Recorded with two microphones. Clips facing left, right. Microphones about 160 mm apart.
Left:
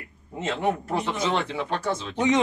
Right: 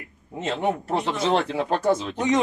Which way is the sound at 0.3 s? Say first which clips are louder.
Right 2 dB; 15° right (ahead or behind).